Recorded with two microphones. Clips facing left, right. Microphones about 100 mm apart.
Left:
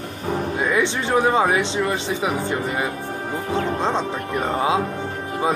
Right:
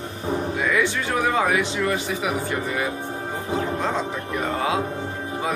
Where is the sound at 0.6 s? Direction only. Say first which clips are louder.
Left 2 dB; 25° left (ahead or behind).